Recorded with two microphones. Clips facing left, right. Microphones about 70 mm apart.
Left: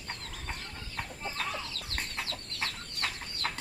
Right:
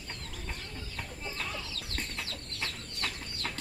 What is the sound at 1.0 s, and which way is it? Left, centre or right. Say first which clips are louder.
Chicken: left 3 dB; left.